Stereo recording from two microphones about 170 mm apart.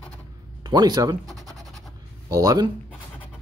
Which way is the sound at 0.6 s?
25° right (ahead or behind).